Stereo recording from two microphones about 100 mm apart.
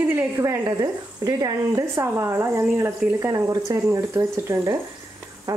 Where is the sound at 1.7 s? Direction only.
25° right (ahead or behind).